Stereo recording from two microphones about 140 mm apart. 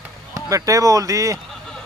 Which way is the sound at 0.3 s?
25° right (ahead or behind).